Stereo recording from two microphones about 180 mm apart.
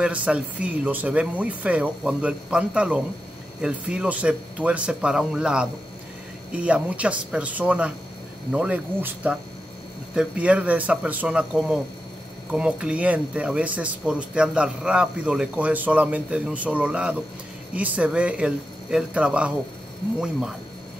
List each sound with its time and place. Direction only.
0.0 s speech: 5° right (ahead or behind)